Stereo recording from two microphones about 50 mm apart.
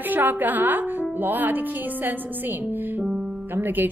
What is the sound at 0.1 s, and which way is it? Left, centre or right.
A woman's voice, right.